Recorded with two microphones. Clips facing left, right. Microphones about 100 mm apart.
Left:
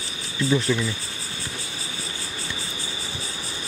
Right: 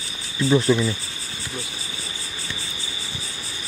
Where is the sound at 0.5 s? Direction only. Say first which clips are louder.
Right 5 dB; 20° right (ahead or behind).